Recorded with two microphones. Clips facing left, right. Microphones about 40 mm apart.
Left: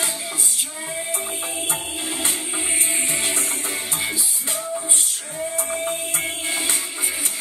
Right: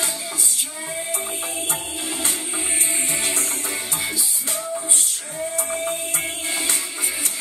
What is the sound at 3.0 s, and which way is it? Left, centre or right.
Music, left.